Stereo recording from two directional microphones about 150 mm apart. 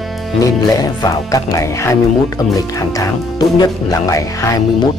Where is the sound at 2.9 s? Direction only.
25° left (ahead or behind).